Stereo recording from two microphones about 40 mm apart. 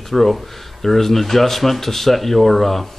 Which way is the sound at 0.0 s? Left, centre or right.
Centre.